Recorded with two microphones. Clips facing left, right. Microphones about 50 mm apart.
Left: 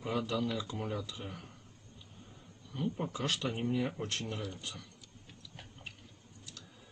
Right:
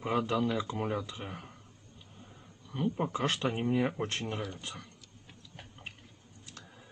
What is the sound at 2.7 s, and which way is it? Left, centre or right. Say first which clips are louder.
Speech: right 4 dB; right.